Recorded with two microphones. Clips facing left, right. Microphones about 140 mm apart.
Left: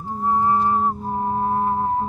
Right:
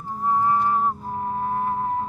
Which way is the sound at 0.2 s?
30° left (ahead or behind).